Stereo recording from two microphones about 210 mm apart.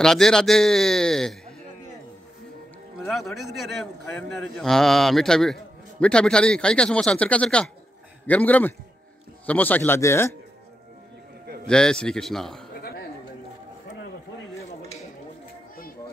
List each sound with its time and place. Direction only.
0.0 s a man's voice: centre (ahead or behind)
3.1 s a man's voice: centre (ahead or behind)
11.6 s a man's voice: 5° left (ahead or behind)
12.7 s a sound: 45° left (ahead or behind)